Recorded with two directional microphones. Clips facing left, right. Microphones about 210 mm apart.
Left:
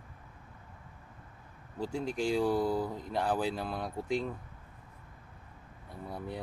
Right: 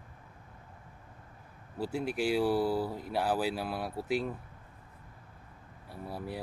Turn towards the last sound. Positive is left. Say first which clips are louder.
# right 1 dB
turn(degrees=-5)  # may be behind; listen again after turning